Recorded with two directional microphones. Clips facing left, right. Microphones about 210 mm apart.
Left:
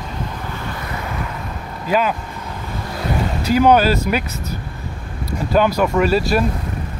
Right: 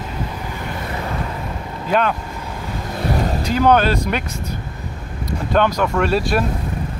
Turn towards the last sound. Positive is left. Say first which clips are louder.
# left 2 dB
turn(degrees=0)  # may be behind; listen again after turning